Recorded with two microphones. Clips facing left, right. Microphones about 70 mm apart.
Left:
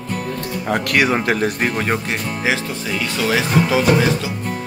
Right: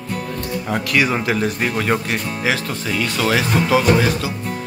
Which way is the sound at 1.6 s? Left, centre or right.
Left.